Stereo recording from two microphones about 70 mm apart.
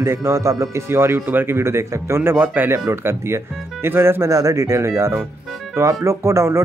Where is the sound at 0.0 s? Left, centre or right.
Right.